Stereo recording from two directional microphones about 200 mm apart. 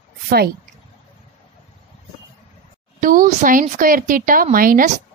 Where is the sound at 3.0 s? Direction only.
45° right (ahead or behind).